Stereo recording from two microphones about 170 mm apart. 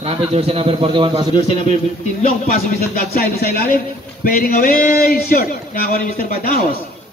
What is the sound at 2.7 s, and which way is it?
Speech, 65° left (ahead or behind).